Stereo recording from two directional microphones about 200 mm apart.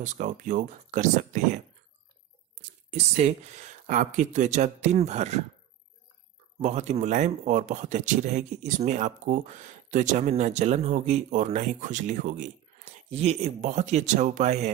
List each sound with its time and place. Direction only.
0.0 s speech: 40° right (ahead or behind)
2.9 s speech: 35° right (ahead or behind)
6.6 s speech: 35° right (ahead or behind)